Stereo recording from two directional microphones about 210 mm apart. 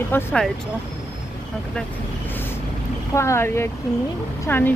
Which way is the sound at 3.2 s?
10° left (ahead or behind).